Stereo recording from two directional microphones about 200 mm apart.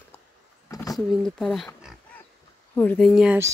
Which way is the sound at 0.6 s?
15° left (ahead or behind).